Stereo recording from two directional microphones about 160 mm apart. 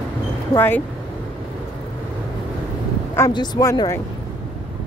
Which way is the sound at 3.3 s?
25° left (ahead or behind).